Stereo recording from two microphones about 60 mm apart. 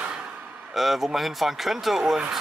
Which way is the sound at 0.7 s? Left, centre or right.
Centre.